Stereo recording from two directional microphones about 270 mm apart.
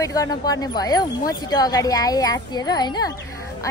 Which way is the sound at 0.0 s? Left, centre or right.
Centre.